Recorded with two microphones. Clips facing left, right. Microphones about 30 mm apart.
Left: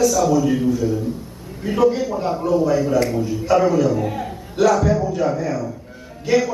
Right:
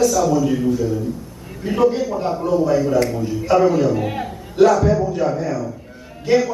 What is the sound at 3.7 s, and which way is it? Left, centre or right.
Speech, centre.